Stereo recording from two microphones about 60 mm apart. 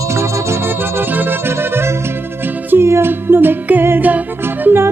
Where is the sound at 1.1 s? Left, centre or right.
Right.